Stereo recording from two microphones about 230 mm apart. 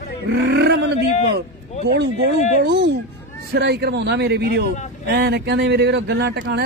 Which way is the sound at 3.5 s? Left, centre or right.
Right.